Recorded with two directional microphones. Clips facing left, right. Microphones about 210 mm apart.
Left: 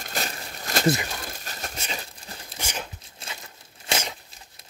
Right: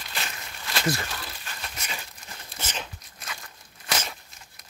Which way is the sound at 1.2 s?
40° left (ahead or behind).